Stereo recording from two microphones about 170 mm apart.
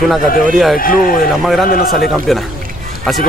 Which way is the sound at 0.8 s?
55° left (ahead or behind).